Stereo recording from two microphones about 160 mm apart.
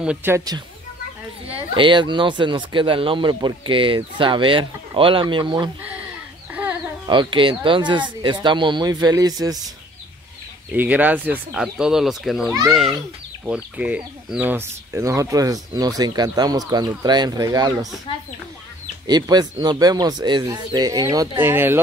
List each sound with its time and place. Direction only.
0.0 s speech: 10° right (ahead or behind)
1.7 s speech: 30° right (ahead or behind)
7.1 s speech: 30° right (ahead or behind)
10.7 s speech: 10° right (ahead or behind)
19.0 s speech: 25° right (ahead or behind)